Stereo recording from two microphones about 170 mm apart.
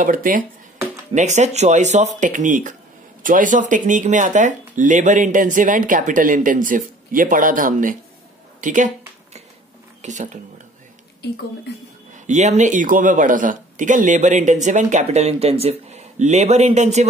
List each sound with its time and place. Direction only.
0.0 s speech: 55° right (ahead or behind)
1.1 s speech: 45° right (ahead or behind)
8.5 s a sound: 50° right (ahead or behind)
10.0 s speech: 45° right (ahead or behind)
12.3 s speech: 45° right (ahead or behind)